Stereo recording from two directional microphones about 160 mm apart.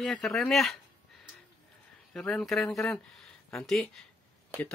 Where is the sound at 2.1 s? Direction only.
5° left (ahead or behind).